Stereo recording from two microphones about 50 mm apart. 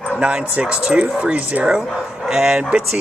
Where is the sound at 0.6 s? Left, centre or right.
Centre.